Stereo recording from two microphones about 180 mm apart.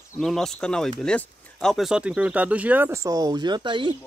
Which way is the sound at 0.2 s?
Centre (ahead or behind).